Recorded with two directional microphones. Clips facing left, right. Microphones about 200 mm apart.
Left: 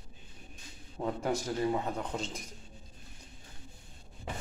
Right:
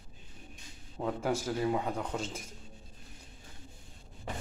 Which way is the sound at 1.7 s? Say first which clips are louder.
Right 1 dB; 10° right (ahead or behind).